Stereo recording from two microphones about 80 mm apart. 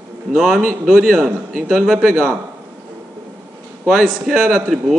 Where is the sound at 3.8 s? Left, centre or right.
Centre.